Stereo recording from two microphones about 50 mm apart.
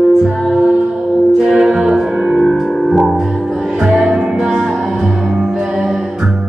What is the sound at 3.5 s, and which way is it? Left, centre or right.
Music, centre.